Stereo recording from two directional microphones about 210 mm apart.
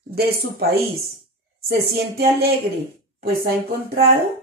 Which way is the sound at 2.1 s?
50° right (ahead or behind).